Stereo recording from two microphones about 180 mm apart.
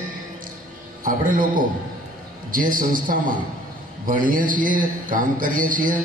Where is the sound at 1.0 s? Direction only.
50° right (ahead or behind).